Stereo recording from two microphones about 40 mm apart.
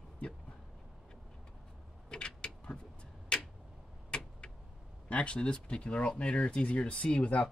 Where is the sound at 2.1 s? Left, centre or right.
Left.